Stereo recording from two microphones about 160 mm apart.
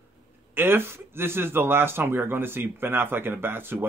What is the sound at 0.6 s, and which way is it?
Speech, 15° right (ahead or behind).